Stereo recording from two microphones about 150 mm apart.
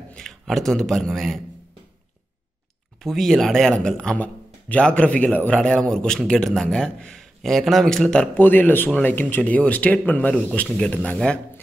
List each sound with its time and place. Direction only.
0.1 s a man's voice: centre (ahead or behind)
3.0 s a man's voice: centre (ahead or behind)